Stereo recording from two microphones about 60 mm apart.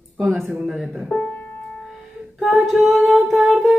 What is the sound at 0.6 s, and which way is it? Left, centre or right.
Speech, centre.